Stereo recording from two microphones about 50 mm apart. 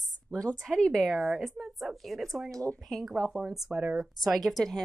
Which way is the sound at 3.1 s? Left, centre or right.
Right.